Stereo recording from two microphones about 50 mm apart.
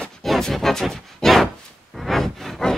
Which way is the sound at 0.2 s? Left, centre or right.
Centre.